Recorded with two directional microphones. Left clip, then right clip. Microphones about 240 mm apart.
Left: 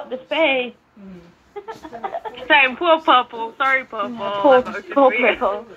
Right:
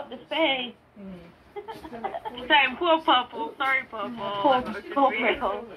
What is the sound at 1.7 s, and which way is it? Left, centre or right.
Speech, left.